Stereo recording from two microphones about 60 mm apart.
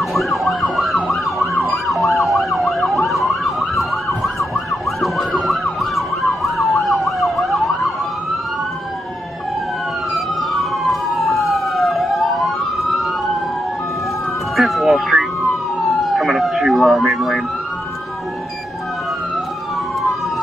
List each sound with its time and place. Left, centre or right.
0.0 s emergency vehicle: centre
10.1 s police car: centre
14.6 s emergency vehicle: centre